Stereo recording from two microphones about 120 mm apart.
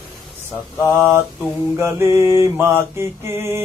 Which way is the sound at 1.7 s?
20° right (ahead or behind).